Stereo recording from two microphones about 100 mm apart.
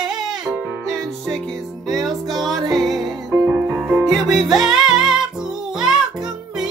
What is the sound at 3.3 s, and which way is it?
Music, 25° right (ahead or behind).